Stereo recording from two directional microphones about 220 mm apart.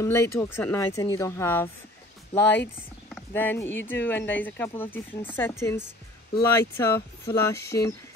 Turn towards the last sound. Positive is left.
turn(degrees=15)  # may be behind; listen again after turning